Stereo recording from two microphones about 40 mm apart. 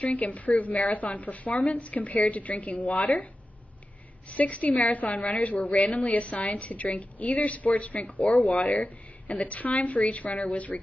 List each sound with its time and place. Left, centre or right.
0.0 s a woman's voice: left
4.3 s a woman's voice: left